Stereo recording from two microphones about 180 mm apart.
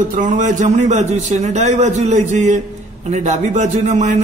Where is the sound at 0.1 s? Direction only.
45° right (ahead or behind).